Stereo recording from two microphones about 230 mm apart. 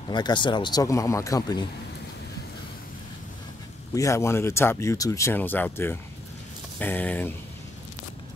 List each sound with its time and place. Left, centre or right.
0.1 s speech: centre
3.9 s speech: centre